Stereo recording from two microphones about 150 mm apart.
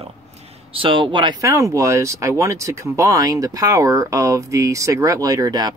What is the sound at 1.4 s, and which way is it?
Speech, 20° right (ahead or behind).